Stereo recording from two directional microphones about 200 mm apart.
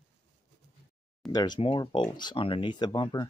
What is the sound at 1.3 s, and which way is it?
Speech, 20° left (ahead or behind).